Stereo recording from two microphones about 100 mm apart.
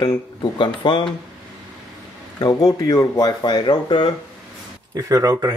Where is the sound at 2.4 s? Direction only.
40° left (ahead or behind).